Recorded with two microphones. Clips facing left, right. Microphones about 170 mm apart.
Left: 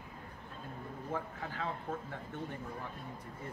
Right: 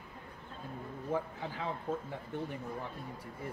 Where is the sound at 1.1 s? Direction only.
15° right (ahead or behind).